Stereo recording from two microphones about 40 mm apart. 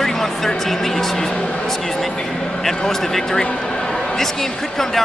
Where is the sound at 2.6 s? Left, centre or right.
Centre.